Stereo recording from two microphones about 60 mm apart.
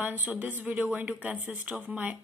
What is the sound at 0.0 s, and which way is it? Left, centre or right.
A woman's voice, right.